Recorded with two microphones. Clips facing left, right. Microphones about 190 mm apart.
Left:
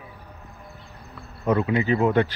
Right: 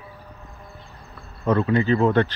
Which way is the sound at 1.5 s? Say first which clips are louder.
Right 2 dB; 15° left (ahead or behind).